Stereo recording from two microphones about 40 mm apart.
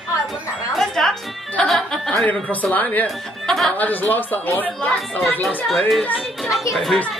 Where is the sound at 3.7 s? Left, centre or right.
Left.